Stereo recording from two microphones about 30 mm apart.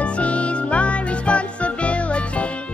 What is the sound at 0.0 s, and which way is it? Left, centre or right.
Music, left.